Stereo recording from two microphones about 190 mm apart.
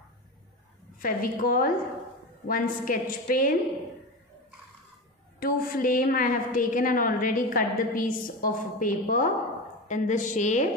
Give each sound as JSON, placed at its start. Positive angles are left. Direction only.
{"t": 0.9, "sound": "a woman's voice", "side_deg": 45}
{"t": 5.4, "sound": "a woman's voice", "side_deg": 50}